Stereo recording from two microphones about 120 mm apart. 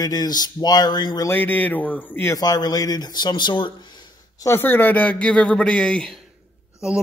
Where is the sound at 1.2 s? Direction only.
15° left (ahead or behind).